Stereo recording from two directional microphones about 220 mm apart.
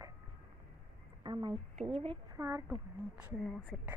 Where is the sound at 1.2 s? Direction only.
20° right (ahead or behind).